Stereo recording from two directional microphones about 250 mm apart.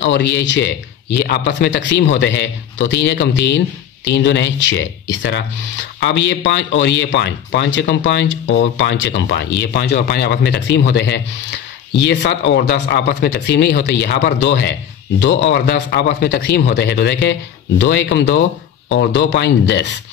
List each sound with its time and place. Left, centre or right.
0.0 s a man's voice: left